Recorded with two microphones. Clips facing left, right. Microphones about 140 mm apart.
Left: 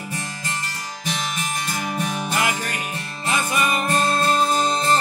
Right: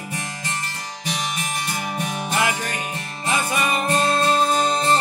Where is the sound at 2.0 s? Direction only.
15° right (ahead or behind).